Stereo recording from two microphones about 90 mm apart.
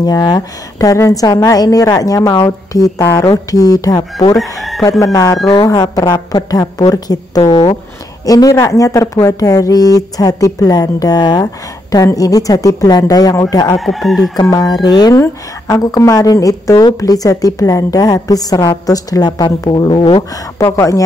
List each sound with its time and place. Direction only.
0.0 s a woman's voice: 50° left (ahead or behind)
4.4 s chicken: centre (ahead or behind)
5.0 s a woman's voice: 40° left (ahead or behind)
13.7 s crowing: centre (ahead or behind)
14.3 s speech: 45° left (ahead or behind)
15.6 s a woman's voice: 35° left (ahead or behind); by 20.2 s 65° left (ahead or behind)
20.6 s a woman's voice: 35° left (ahead or behind)